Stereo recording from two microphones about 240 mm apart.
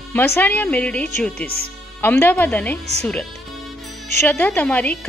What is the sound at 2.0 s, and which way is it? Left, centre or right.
A woman's voice, centre.